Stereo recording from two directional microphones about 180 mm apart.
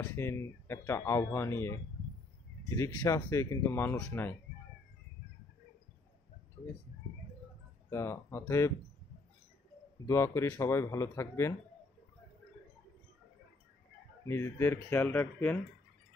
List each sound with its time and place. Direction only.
0.0 s speech: 15° left (ahead or behind)
7.9 s speech: 15° left (ahead or behind)
10.0 s speech: 15° left (ahead or behind)
14.2 s speech: 15° left (ahead or behind)